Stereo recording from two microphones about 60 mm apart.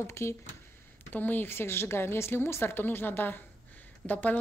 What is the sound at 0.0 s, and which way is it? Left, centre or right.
Speech, left.